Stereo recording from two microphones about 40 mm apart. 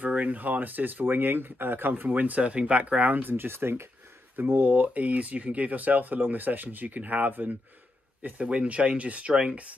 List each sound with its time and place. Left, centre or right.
0.0 s speech: right
2.0 s speech: right
2.4 s speech: right
3.3 s speech: right
4.4 s speech: right
4.7 s speech: right
8.2 s speech: right